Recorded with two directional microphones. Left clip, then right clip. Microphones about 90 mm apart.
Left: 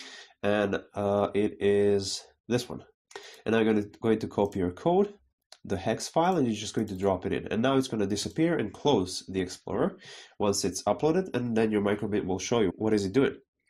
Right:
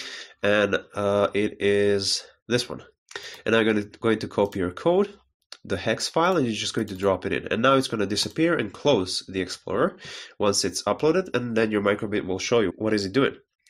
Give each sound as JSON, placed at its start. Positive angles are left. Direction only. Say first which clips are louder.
{"t": 0.0, "sound": "speech", "louder": "right 6 dB", "side_deg": 25}